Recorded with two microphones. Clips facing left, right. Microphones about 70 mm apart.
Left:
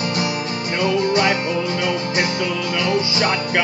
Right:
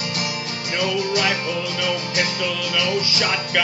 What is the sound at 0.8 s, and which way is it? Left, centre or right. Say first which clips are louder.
Music: left 4 dB; left.